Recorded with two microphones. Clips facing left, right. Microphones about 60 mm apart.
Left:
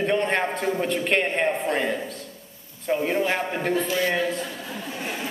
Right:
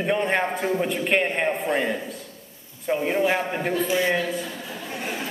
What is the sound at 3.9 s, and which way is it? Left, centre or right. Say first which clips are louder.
Speech: right 2 dB; centre.